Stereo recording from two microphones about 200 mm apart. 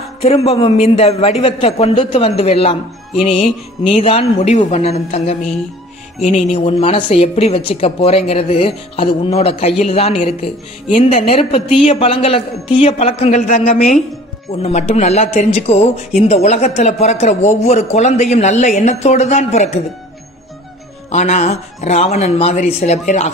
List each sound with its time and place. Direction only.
0.2 s a man's voice: 30° left (ahead or behind)
21.1 s a man's voice: 35° left (ahead or behind)